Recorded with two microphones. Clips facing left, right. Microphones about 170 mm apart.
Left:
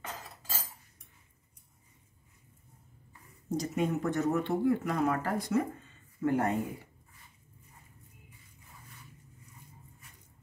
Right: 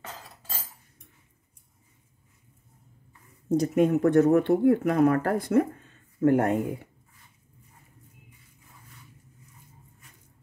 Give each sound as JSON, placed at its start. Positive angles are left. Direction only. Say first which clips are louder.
{"t": 3.4, "sound": "speech", "louder": "right 9 dB", "side_deg": -55}